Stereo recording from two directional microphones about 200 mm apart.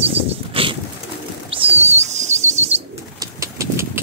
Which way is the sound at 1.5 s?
30° right (ahead or behind).